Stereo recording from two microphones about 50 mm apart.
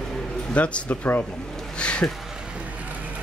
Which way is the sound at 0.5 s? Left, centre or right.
Left.